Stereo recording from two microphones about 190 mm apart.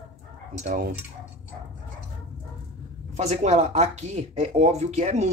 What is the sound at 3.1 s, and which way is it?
Speech, 35° right (ahead or behind).